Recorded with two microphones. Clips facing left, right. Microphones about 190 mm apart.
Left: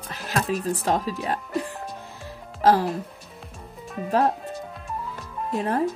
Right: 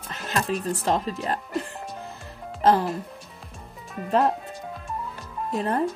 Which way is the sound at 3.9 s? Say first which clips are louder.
Even; centre (ahead or behind).